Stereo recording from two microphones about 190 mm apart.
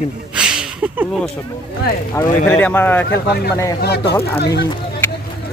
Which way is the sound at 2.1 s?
10° left (ahead or behind).